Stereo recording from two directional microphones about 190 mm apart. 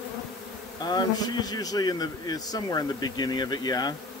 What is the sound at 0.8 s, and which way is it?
A man's voice, 20° left (ahead or behind).